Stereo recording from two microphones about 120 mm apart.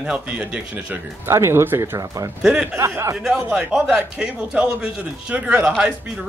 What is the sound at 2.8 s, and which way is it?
Speech, 25° right (ahead or behind).